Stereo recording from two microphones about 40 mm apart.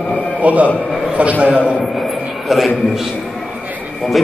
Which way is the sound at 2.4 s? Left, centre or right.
Centre.